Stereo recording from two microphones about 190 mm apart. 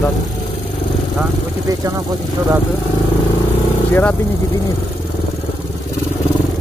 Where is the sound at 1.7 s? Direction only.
20° right (ahead or behind).